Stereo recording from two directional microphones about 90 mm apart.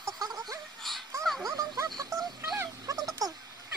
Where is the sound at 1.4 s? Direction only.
45° right (ahead or behind).